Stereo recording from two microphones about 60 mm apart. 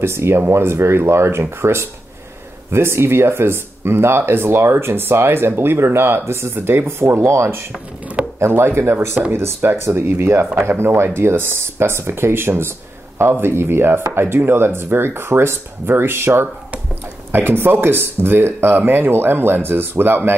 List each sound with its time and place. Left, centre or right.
0.0 s speech: right